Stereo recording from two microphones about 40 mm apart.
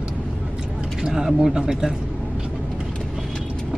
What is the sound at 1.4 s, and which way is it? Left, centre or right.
Speech, centre.